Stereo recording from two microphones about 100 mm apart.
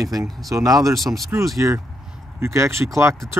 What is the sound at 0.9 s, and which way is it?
Speech, centre (ahead or behind).